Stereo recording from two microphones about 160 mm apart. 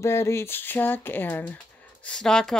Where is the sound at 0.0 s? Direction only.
15° left (ahead or behind).